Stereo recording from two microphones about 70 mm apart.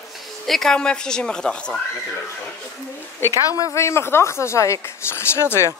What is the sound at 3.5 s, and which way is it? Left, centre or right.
Speech, left.